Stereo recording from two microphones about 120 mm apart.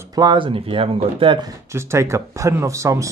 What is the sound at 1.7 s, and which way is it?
Speech, 25° right (ahead or behind).